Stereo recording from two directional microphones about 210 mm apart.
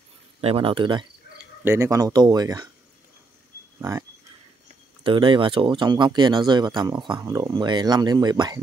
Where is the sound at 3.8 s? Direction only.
15° right (ahead or behind).